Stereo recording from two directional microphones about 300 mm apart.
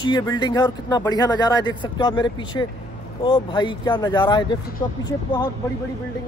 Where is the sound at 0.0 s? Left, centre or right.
Centre.